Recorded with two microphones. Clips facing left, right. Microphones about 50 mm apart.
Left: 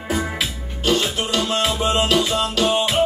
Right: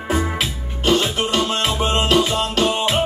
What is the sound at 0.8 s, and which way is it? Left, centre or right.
Music, right.